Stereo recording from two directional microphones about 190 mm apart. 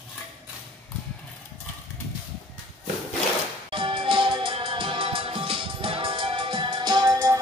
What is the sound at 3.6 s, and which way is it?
Music, 25° right (ahead or behind).